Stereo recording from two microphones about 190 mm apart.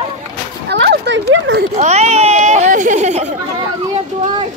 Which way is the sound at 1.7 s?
35° right (ahead or behind).